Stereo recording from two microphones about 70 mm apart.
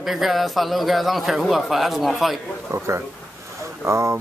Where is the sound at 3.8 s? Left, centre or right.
Right.